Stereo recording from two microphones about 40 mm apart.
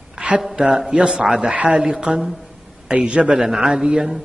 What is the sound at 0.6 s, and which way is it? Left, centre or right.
A man's voice, centre.